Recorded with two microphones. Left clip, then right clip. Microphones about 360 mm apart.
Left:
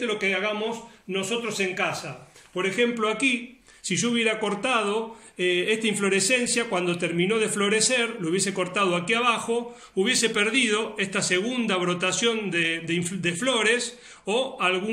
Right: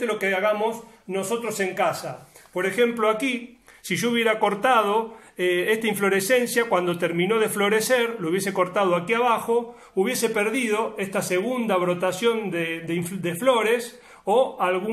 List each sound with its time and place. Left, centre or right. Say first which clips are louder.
0.0 s a man's voice: right 3 dB; centre